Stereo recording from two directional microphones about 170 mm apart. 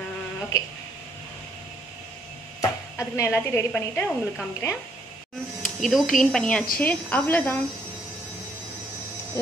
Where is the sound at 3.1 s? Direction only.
15° left (ahead or behind).